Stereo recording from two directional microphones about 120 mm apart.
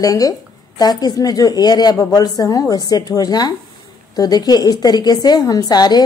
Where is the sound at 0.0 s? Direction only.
30° left (ahead or behind).